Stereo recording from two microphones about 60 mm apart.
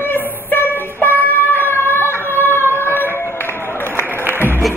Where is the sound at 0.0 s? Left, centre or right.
Left.